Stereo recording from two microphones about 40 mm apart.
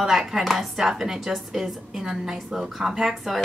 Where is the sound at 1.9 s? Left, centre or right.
Centre.